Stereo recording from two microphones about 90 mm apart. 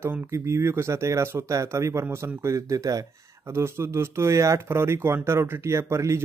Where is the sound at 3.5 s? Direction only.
30° right (ahead or behind).